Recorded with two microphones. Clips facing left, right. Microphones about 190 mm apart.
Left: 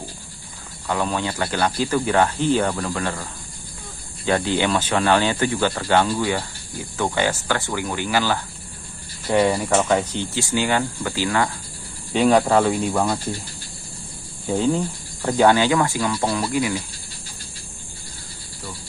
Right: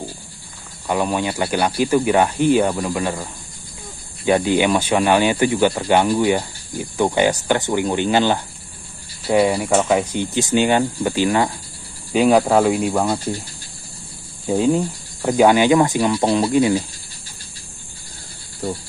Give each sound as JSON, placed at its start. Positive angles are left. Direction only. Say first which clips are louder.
{"t": 0.8, "sound": "speech", "louder": "right 3 dB", "side_deg": -15}
{"t": 4.3, "sound": "speech", "louder": "right 4 dB", "side_deg": -15}
{"t": 9.3, "sound": "speech", "louder": "right 2 dB", "side_deg": -10}
{"t": 12.1, "sound": "speech", "louder": "right 2 dB", "side_deg": -10}
{"t": 14.5, "sound": "speech", "louder": "right 3 dB", "side_deg": -15}